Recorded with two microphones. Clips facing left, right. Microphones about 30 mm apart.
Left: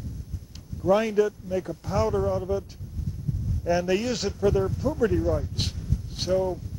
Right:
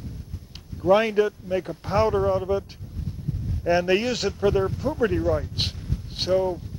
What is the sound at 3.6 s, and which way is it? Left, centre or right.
Speech, right.